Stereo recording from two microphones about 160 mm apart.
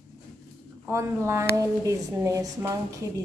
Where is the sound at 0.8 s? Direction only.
15° right (ahead or behind).